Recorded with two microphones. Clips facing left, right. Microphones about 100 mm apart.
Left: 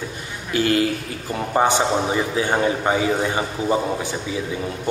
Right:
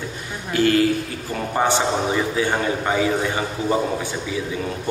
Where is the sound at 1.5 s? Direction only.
15° left (ahead or behind).